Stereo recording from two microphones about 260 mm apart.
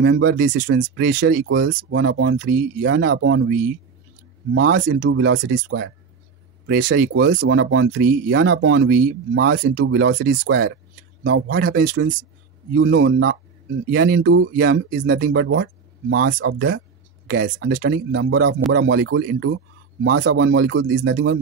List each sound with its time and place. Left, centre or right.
0.0 s speech: right
0.8 s speech: right
2.3 s speech: right
4.6 s speech: right
6.6 s speech: right
10.2 s speech: right
11.2 s speech: right
13.8 s speech: right
15.1 s speech: right
15.4 s speech: right